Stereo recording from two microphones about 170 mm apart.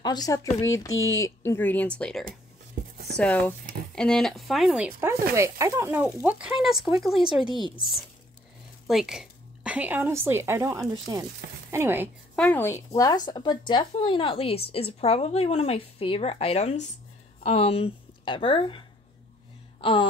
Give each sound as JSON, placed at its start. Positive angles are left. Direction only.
{"t": 0.0, "sound": "speech", "side_deg": 25}
{"t": 7.3, "sound": "speech", "side_deg": 30}
{"t": 8.8, "sound": "a woman's voice", "side_deg": 0}
{"t": 12.4, "sound": "a woman's voice", "side_deg": 10}
{"t": 19.8, "sound": "speech", "side_deg": 30}